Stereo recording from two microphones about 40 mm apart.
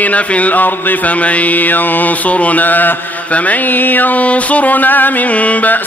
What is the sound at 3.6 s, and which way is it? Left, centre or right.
Mantra, left.